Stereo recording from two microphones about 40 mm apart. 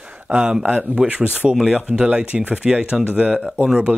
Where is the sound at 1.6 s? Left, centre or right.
Centre.